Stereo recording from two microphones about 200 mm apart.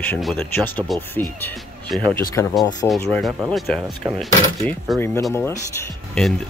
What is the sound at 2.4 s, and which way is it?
Speech, 10° left (ahead or behind).